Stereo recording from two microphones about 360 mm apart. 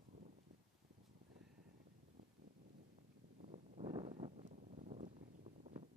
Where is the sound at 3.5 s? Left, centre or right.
Centre.